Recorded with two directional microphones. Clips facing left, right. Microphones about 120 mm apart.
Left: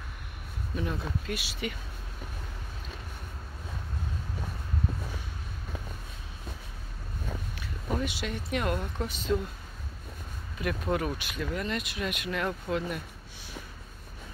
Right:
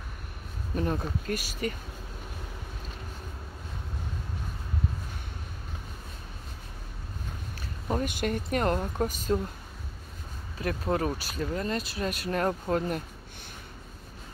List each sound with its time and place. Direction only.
0.7 s speech: 45° right (ahead or behind)
7.9 s speech: 45° right (ahead or behind)
10.6 s speech: 35° right (ahead or behind)